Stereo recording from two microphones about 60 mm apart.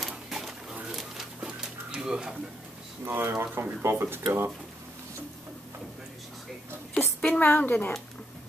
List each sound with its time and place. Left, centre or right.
0.0 s pigeon: centre
0.9 s a sound: centre
3.1 s speech: right
7.2 s a woman's voice: left